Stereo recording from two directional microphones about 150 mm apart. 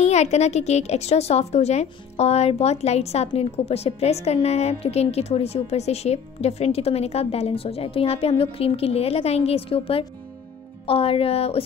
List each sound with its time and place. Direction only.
0.0 s a woman's voice: 50° left (ahead or behind)